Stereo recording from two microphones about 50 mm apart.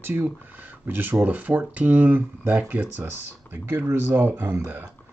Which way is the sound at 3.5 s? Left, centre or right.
Right.